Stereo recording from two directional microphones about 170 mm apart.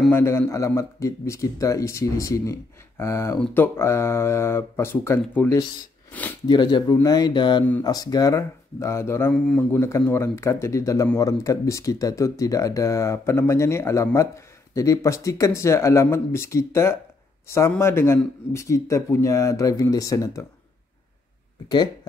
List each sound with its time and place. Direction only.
0.1 s speech: 15° left (ahead or behind)
6.4 s speech: 25° left (ahead or behind)